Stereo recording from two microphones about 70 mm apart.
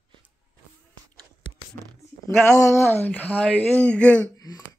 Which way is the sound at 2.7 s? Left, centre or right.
Left.